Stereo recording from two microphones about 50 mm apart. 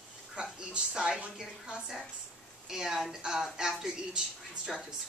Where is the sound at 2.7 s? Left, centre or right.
Centre.